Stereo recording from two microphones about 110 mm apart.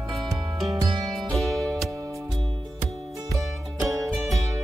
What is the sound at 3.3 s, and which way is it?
Music, 25° right (ahead or behind).